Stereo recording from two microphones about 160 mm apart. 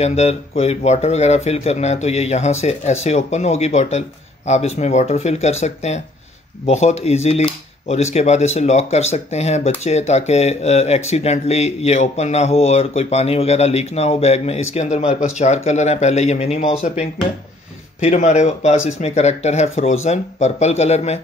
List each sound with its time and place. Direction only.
0.0 s speech: 40° left (ahead or behind)
18.0 s speech: 45° left (ahead or behind)